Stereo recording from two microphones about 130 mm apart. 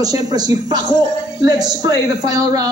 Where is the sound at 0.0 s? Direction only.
30° right (ahead or behind).